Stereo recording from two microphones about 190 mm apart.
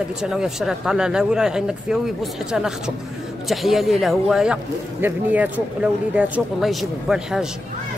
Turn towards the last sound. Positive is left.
turn(degrees=0)  # may be behind; listen again after turning